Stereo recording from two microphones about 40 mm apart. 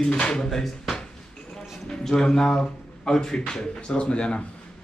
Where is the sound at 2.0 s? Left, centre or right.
Centre.